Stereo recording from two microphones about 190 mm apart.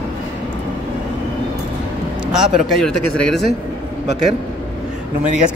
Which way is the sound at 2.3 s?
Centre (ahead or behind).